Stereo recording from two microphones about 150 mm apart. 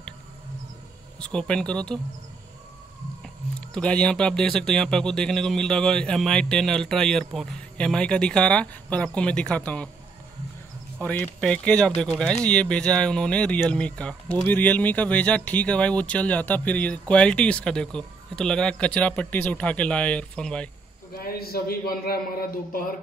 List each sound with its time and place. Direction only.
1.2 s speech: 5° left (ahead or behind)
3.7 s speech: 5° left (ahead or behind)
11.0 s speech: 10° left (ahead or behind)
21.1 s a man's voice: 85° left
22.7 s speech: 70° left (ahead or behind)